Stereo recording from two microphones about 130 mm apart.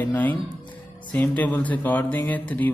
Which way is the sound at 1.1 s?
10° left (ahead or behind).